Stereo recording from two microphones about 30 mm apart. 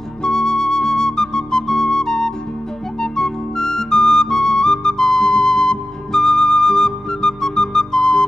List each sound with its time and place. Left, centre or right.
0.2 s flute: left
3.0 s music: left
5.3 s flute: left